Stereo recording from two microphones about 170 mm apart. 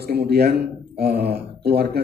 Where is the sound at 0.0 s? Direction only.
70° right (ahead or behind).